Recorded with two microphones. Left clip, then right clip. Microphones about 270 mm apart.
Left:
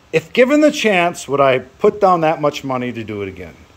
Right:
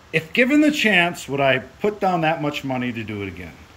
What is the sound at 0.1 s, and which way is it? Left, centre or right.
Speech, centre.